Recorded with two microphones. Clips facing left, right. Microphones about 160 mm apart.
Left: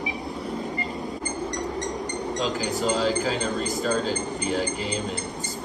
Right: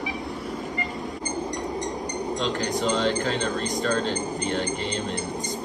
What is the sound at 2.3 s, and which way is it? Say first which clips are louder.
Speech: even; 5° left (ahead or behind).